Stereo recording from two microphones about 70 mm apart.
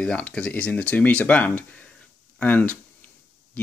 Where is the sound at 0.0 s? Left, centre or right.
Centre.